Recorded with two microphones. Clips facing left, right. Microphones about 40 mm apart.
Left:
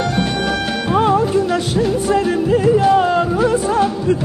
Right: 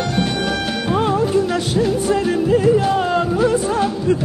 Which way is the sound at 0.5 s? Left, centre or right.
Centre.